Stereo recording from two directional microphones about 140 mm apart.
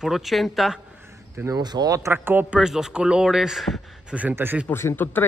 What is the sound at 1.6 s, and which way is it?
Speech, 30° right (ahead or behind).